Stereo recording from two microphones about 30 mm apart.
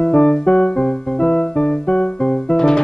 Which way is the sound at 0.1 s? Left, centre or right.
Left.